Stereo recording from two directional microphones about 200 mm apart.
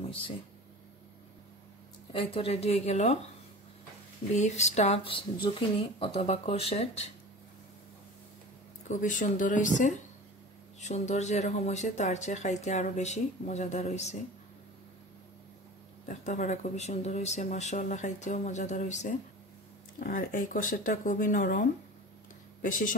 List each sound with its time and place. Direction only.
2.1 s speech: 30° left (ahead or behind)
4.4 s speech: 35° left (ahead or behind)
8.8 s speech: 40° left (ahead or behind)
16.1 s speech: 40° left (ahead or behind)